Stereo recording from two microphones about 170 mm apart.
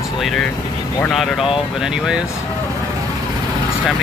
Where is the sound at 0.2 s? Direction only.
Centre (ahead or behind).